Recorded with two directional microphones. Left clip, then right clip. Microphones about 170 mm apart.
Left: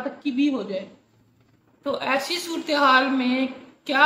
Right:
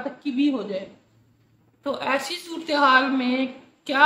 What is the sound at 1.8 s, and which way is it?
A man's voice, 5° right (ahead or behind).